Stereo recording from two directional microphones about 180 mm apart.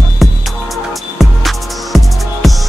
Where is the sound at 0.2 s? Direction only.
Centre (ahead or behind).